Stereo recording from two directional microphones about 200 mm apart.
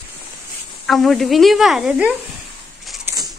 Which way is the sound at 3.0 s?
15° right (ahead or behind).